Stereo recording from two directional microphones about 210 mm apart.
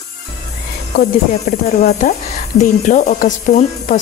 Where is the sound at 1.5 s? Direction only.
35° left (ahead or behind).